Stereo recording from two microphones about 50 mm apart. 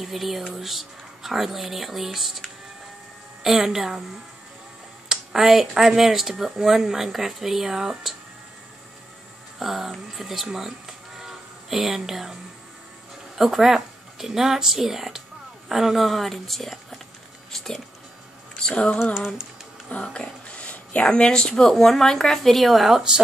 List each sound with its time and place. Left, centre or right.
0.0 s speech: centre
3.4 s speech: centre
5.0 s speech: centre
9.6 s speech: centre
13.4 s speech: centre
18.6 s a sound: left
19.1 s speech: centre
19.9 s speech: left; by 23.2 s centre